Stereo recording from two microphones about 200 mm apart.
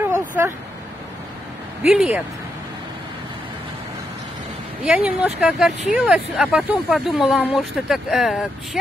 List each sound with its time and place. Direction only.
0.0 s a sound: 10° right (ahead or behind)
1.8 s speech: centre (ahead or behind)
4.8 s speech: 5° right (ahead or behind)